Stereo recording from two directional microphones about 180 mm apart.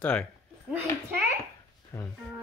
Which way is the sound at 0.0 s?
5° left (ahead or behind).